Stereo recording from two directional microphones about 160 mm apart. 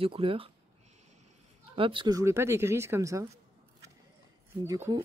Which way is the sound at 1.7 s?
35° right (ahead or behind).